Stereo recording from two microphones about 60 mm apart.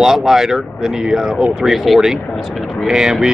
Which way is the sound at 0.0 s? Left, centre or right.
Centre.